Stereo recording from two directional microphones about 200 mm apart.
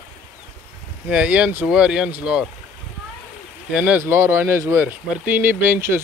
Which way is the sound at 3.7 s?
5° right (ahead or behind).